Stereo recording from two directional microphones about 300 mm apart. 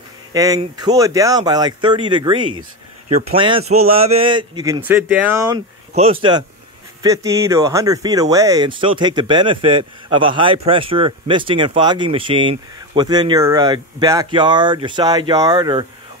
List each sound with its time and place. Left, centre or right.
0.3 s speech: centre